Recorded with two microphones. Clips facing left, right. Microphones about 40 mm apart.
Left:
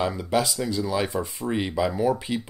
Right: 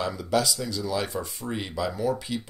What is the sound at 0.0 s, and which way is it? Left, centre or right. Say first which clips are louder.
Speech: left 2 dB; left.